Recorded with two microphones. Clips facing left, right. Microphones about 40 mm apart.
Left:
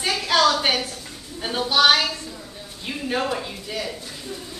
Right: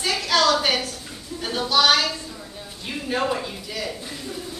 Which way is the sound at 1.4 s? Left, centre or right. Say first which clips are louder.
Left 1 dB; left.